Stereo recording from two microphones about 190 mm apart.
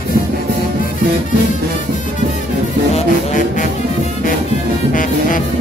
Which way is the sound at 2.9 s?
40° left (ahead or behind).